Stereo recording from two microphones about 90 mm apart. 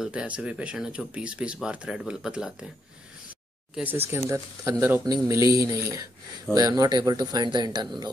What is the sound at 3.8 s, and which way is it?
Speech, 20° right (ahead or behind).